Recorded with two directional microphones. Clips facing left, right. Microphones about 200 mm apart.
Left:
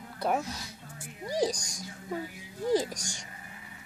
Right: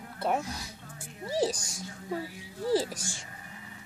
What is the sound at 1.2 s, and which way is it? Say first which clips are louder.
Speech: even; 5° right (ahead or behind).